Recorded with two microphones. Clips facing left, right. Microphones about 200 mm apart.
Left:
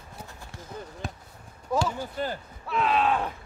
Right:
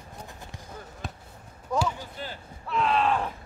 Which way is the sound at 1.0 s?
Centre (ahead or behind).